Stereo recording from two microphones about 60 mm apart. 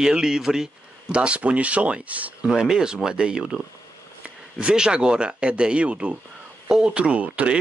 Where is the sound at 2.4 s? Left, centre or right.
Centre.